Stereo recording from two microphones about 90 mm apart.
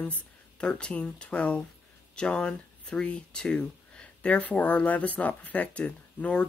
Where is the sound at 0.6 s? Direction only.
10° left (ahead or behind).